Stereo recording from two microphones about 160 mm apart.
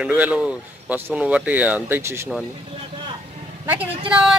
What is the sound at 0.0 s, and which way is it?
Speech, 10° right (ahead or behind).